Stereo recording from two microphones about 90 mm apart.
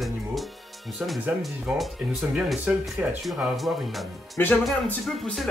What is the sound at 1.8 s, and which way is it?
Speech, 5° right (ahead or behind).